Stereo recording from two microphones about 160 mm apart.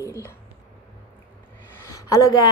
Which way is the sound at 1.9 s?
20° left (ahead or behind).